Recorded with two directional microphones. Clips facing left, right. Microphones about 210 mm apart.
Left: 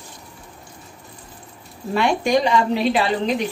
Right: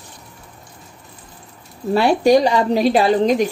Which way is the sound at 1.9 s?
35° right (ahead or behind).